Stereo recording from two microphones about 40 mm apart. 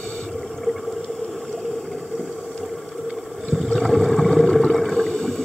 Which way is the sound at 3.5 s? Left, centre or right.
Centre.